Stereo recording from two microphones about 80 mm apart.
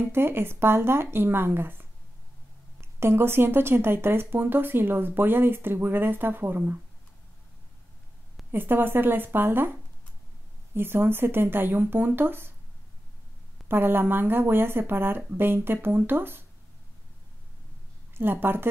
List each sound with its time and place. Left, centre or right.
0.0 s speech: right
8.5 s speech: right
10.7 s speech: right
13.7 s speech: right
18.1 s a woman's voice: right